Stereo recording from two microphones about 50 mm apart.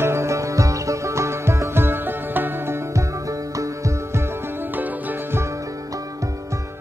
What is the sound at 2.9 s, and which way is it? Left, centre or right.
Music, right.